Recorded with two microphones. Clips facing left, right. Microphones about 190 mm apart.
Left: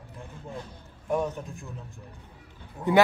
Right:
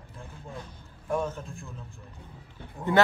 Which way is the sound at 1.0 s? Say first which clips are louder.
Left 2 dB; 15° left (ahead or behind).